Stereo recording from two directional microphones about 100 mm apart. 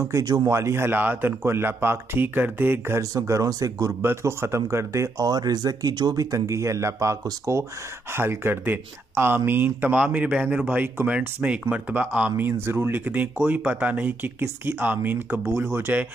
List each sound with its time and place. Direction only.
0.0 s speech: 35° right (ahead or behind)
0.6 s speech: 25° right (ahead or behind)
4.0 s speech: 25° right (ahead or behind)